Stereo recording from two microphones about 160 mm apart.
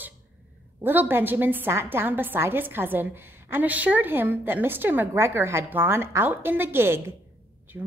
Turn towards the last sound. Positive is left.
turn(degrees=-5)  # may be behind; listen again after turning